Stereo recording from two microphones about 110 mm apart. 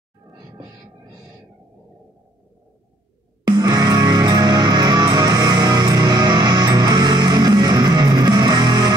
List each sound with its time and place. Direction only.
3.4 s music: 40° right (ahead or behind)